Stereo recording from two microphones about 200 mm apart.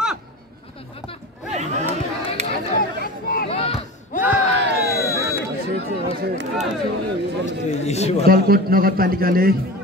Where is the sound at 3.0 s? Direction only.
50° left (ahead or behind).